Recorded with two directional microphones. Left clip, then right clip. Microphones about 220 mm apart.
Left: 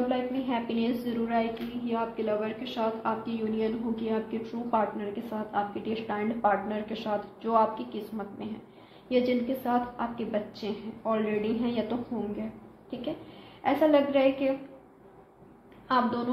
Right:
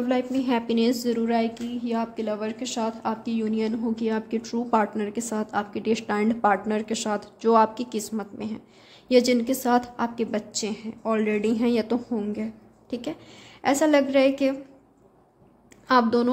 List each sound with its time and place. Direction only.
0.1 s a woman's voice: 55° right (ahead or behind)
13.6 s a woman's voice: 55° right (ahead or behind)
15.9 s a woman's voice: 65° right (ahead or behind)